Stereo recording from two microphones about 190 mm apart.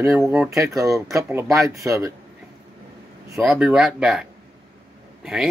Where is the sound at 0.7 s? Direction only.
15° right (ahead or behind).